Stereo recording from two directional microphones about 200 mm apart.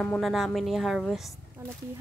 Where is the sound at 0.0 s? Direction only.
5° left (ahead or behind).